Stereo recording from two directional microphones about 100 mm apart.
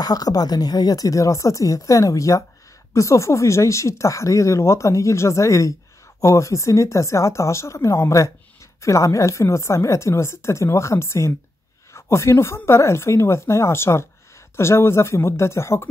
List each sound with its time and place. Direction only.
0.0 s a woman's voice: 40° left (ahead or behind)